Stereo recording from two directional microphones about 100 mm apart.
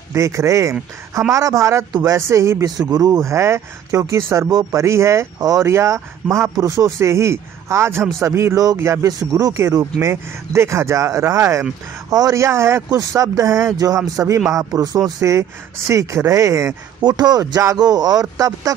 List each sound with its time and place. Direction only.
0.1 s speech: 30° right (ahead or behind)
2.9 s speech: 40° right (ahead or behind)